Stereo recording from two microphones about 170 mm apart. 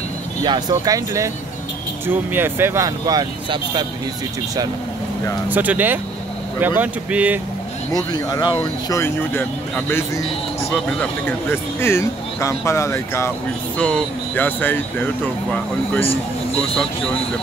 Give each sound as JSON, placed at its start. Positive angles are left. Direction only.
{"t": 0.4, "sound": "speech", "side_deg": -25}
{"t": 5.5, "sound": "speech", "side_deg": -10}
{"t": 7.9, "sound": "speech", "side_deg": 25}
{"t": 16.1, "sound": "speech", "side_deg": 35}